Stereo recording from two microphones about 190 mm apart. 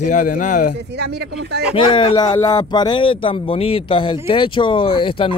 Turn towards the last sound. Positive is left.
turn(degrees=25)  # may be behind; listen again after turning